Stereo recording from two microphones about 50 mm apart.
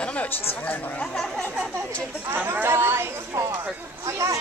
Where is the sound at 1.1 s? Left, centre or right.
Centre.